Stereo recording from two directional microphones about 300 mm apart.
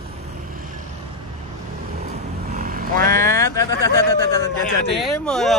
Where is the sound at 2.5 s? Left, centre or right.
Right.